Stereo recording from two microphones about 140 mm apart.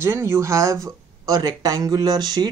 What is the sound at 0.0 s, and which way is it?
Speech, 20° right (ahead or behind).